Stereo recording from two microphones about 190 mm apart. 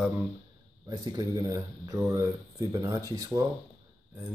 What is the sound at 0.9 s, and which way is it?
Speech, 20° right (ahead or behind).